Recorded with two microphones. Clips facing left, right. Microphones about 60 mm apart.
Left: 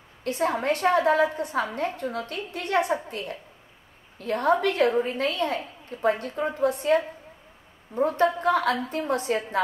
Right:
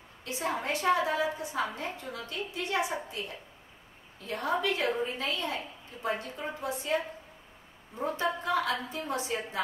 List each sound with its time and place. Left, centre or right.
0.2 s a woman's voice: left